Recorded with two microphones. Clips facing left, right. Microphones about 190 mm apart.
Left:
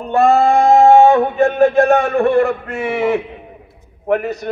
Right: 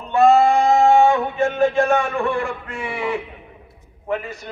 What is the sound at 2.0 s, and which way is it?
Speech, 60° left (ahead or behind).